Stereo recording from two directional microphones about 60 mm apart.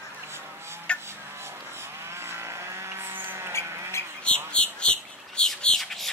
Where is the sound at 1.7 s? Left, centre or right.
Right.